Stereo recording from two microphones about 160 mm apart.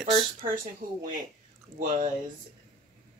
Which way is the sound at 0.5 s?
60° right (ahead or behind).